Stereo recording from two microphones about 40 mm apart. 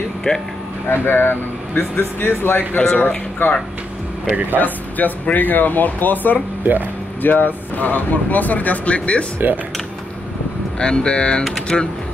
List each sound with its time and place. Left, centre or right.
0.3 s speech: centre
0.8 s speech: left
1.8 s speech: left
3.4 s speech: left
4.3 s speech: right
4.6 s speech: left
9.4 s speech: right
10.8 s speech: left